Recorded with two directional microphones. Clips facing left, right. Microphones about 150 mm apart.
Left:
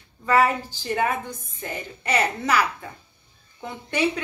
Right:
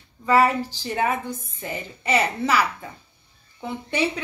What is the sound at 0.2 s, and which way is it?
A woman's voice, centre (ahead or behind).